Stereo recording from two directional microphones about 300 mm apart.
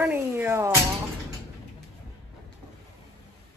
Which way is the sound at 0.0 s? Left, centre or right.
Centre.